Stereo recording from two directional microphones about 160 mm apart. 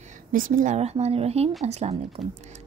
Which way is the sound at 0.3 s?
55° right (ahead or behind).